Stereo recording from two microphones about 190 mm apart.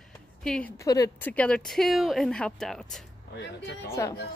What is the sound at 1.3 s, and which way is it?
Speech, 5° left (ahead or behind).